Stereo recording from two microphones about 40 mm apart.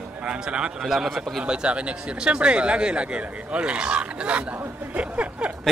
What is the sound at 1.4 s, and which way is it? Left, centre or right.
Speech, right.